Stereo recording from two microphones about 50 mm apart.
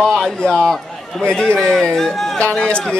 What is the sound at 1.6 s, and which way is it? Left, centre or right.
Speech, centre.